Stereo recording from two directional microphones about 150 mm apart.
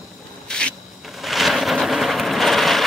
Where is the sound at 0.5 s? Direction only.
5° left (ahead or behind).